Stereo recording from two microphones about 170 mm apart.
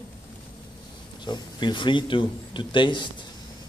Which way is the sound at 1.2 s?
25° left (ahead or behind).